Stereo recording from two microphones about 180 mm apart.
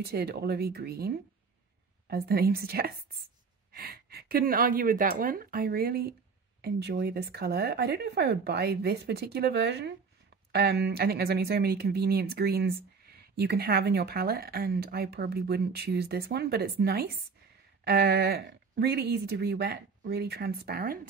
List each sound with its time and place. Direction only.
0.0 s speech: 60° right (ahead or behind)